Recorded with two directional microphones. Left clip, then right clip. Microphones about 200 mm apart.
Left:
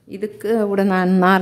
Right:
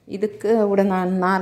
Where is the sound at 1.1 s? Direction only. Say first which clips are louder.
Left 5 dB; 40° left (ahead or behind).